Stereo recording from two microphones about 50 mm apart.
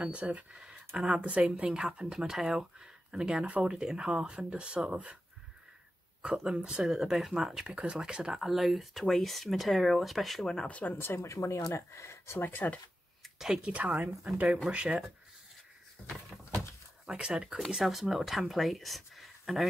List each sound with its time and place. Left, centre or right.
0.0 s speech: right
0.5 s speech: centre
3.7 s speech: centre
6.2 s speech: centre
7.6 s speech: right
8.0 s speech: centre
10.4 s speech: centre
10.7 s speech: left
11.1 s speech: left
12.4 s speech: left
13.2 s a sound: centre
14.7 s speech: right
16.0 s a sound: centre
17.1 s speech: centre